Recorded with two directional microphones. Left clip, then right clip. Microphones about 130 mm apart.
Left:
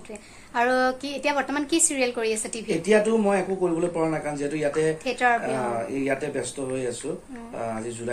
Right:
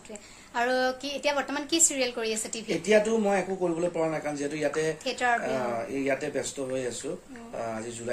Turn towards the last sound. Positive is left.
turn(degrees=-25)  # may be behind; listen again after turning